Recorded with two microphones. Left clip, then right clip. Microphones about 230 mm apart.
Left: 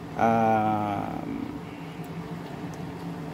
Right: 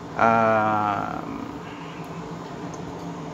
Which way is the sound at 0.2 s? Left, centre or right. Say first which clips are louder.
Right 4 dB; centre.